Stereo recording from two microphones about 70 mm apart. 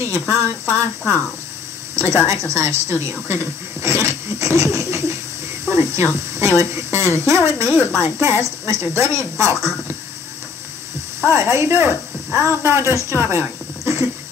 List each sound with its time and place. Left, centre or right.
0.0 s speech: right
5.7 s a sound: right
6.4 s speech: right
11.2 s speech: right